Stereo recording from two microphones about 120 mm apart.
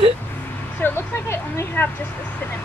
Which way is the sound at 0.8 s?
20° left (ahead or behind).